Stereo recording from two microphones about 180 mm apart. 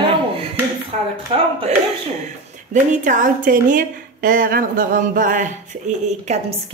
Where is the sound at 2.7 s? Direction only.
45° right (ahead or behind).